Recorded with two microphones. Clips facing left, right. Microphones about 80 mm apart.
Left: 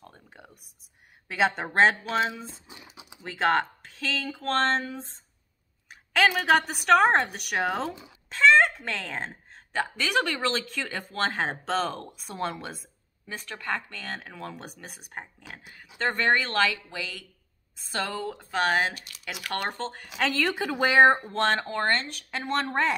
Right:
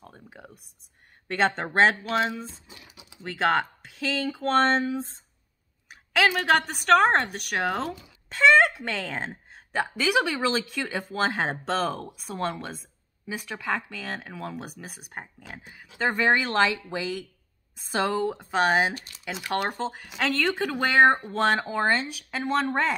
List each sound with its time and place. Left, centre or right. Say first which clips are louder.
0.0 s a sound: right 3 dB; centre
1.3 s a woman's voice: right 1 dB; centre
2.7 s a sound: left 2 dB; left
3.2 s a woman's voice: even; centre
13.3 s a woman's voice: right 3 dB; centre
18.9 s speech: right 4 dB; right
19.5 s a woman's voice: right 4 dB; centre
21.3 s a woman's voice: right 2 dB; centre